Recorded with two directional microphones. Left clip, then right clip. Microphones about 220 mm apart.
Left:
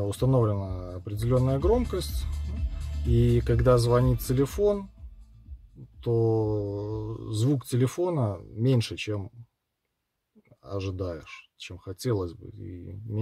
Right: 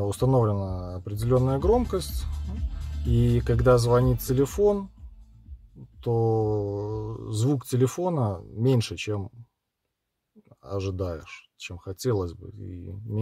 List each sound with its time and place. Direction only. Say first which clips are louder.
0.0 s speech: right 2 dB; 20° right (ahead or behind)
3.2 s speech: left 1 dB; 15° right (ahead or behind)
6.0 s speech: right 1 dB; 15° right (ahead or behind)
10.6 s speech: right 2 dB; 15° right (ahead or behind)